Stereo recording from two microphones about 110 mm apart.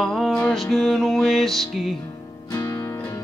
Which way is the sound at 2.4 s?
35° left (ahead or behind).